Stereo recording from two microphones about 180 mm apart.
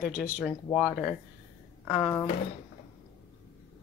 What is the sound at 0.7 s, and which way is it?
Speech, 5° left (ahead or behind).